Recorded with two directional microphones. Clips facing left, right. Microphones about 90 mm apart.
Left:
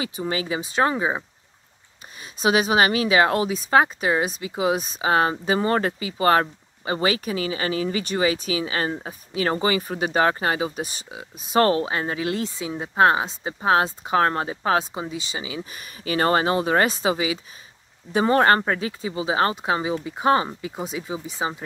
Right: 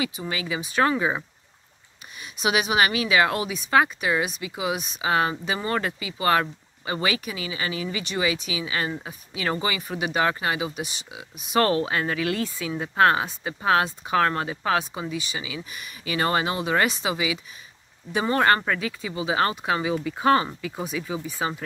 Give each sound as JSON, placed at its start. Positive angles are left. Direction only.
{"t": 0.0, "sound": "speech", "side_deg": 35}
{"t": 2.3, "sound": "speech", "side_deg": 35}